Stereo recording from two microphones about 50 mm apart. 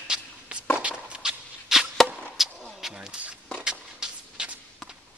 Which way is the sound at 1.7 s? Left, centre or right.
Centre.